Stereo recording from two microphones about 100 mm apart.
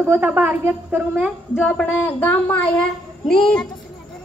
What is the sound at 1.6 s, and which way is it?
A child's voice, 10° left (ahead or behind).